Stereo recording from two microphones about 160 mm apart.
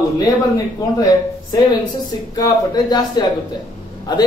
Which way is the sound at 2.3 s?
25° left (ahead or behind).